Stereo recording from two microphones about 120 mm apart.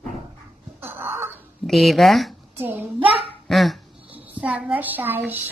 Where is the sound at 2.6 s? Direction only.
15° right (ahead or behind).